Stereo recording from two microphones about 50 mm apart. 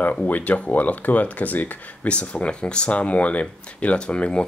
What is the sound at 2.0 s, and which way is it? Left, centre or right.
Speech, left.